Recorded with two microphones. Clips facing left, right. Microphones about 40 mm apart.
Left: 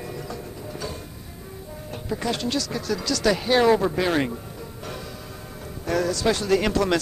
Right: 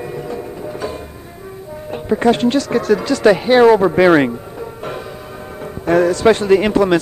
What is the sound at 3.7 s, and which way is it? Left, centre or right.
Speech, right.